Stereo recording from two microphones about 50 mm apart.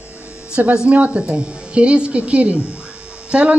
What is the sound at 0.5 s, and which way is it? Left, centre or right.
A woman's voice, right.